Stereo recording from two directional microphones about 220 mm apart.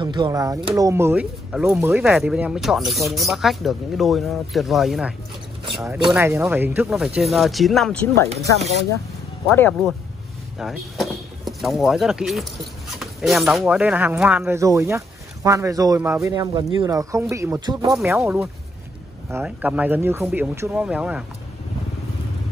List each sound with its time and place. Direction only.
0.0 s speech: 20° right (ahead or behind); by 8.1 s 5° left (ahead or behind)
8.3 s speech: 30° right (ahead or behind)
9.6 s speech: 5° left (ahead or behind)